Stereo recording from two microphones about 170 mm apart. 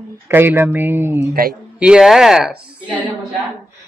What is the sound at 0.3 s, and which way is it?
Speech, 10° right (ahead or behind).